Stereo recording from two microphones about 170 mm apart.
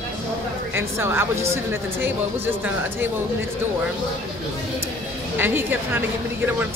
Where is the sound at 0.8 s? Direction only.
15° right (ahead or behind).